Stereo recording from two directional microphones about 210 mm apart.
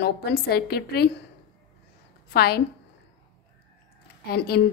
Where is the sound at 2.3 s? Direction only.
50° left (ahead or behind).